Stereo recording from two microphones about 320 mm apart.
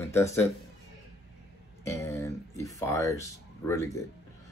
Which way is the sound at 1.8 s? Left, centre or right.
Centre.